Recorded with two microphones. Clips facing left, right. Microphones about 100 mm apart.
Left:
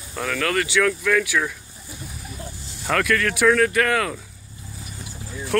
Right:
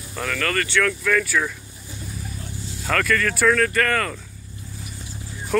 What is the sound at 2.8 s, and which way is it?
Speech, 5° left (ahead or behind).